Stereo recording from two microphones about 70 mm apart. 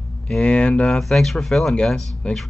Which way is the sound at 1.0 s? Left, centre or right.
Centre.